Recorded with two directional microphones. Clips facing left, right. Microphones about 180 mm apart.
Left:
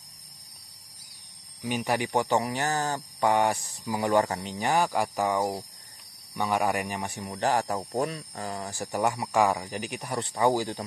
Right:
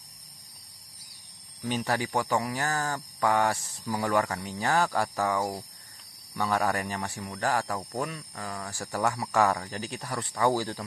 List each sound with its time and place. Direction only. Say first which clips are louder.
1.6 s speech: left 1 dB; 10° left (ahead or behind)